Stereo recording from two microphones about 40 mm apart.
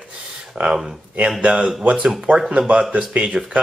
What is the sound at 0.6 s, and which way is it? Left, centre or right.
Speech, right.